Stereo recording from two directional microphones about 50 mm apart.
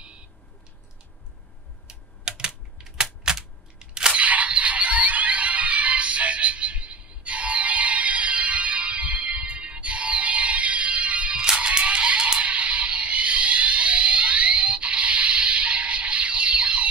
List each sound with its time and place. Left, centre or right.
1.9 s typing: centre
4.2 s music: right